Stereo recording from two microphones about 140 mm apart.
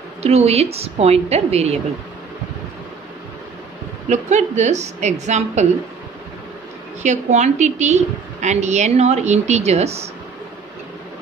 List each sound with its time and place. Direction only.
0.2 s a woman's voice: 50° right (ahead or behind)
4.1 s a woman's voice: 55° right (ahead or behind)
7.0 s a woman's voice: 55° right (ahead or behind)